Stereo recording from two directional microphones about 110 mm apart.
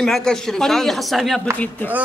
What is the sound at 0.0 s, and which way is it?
Speech, 5° left (ahead or behind).